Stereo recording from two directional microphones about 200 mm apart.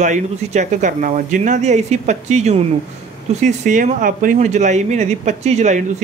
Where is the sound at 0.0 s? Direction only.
35° right (ahead or behind).